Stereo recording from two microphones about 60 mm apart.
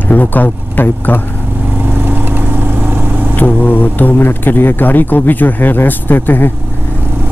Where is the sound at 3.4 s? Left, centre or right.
Left.